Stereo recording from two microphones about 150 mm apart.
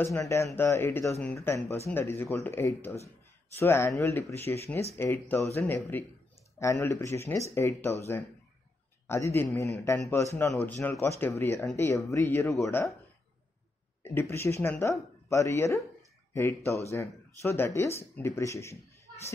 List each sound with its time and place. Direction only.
0.0 s speech: 20° left (ahead or behind)
14.3 s speech: 15° left (ahead or behind)